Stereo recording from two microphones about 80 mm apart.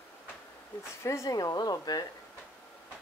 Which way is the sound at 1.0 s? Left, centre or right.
Left.